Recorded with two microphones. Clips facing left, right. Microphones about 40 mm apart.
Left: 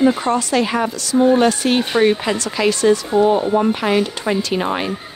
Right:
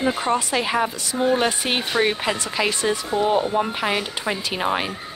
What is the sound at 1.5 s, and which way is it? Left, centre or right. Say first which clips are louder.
A woman's voice: left 6 dB; centre.